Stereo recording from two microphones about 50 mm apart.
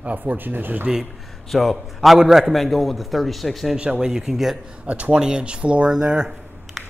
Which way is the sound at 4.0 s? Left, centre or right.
Centre.